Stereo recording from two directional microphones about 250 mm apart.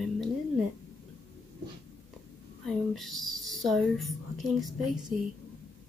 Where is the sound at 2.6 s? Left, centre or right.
Centre.